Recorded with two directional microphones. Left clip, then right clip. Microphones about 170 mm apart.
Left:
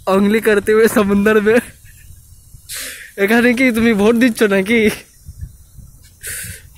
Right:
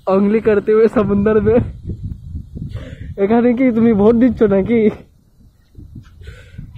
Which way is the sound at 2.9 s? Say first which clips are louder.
Left 1 dB; 5° right (ahead or behind).